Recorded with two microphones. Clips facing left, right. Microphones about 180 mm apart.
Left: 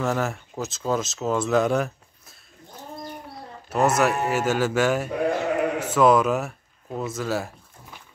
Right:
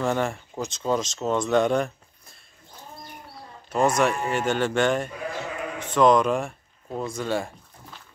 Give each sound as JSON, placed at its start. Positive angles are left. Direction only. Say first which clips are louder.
{"t": 0.0, "sound": "speech", "louder": "even", "side_deg": 5}
{"t": 3.7, "sound": "speech", "louder": "left 1 dB", "side_deg": 5}
{"t": 5.1, "sound": "sheep", "louder": "left 9 dB", "side_deg": 60}
{"t": 5.8, "sound": "speech", "louder": "right 1 dB", "side_deg": 5}